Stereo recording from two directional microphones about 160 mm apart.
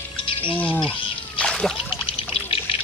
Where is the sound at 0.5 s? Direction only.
10° left (ahead or behind).